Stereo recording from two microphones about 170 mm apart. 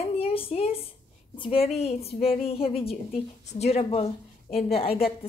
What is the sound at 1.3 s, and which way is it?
A woman's voice, 30° left (ahead or behind).